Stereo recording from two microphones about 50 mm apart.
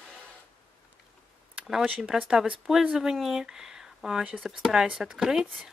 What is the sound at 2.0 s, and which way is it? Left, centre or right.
Speech, right.